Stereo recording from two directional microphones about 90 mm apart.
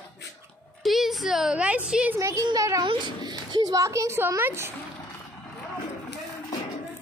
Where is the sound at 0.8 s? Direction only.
Centre (ahead or behind).